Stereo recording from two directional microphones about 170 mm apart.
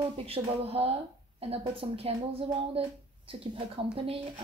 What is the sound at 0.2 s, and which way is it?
A woman's voice, 35° right (ahead or behind).